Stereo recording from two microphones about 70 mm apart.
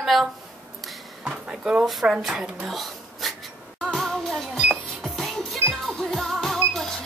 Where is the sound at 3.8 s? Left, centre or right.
Centre.